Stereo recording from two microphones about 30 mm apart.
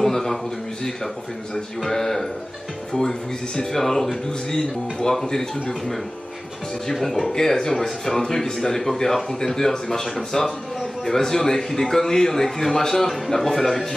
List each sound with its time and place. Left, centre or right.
0.0 s a sound: centre
1.9 s a man's voice: centre
6.9 s a man's voice: centre